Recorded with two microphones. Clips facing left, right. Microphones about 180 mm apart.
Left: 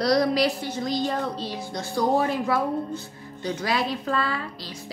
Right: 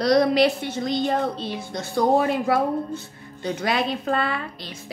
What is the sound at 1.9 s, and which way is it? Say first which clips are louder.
Speech: right 3 dB; 55° right (ahead or behind).